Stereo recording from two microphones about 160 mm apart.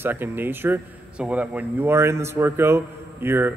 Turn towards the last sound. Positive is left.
turn(degrees=-15)  # may be behind; listen again after turning